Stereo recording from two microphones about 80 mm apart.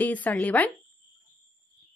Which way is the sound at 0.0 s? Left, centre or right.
Left.